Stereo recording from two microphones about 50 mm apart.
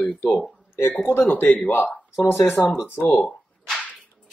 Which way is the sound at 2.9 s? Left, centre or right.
Left.